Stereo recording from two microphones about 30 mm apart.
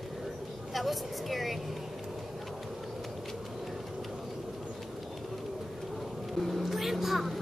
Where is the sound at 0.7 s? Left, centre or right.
Centre.